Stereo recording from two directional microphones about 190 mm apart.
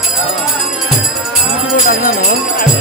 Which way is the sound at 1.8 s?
45° left (ahead or behind).